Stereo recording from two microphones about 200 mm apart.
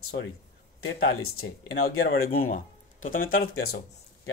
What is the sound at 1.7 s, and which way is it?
Speech, 50° left (ahead or behind).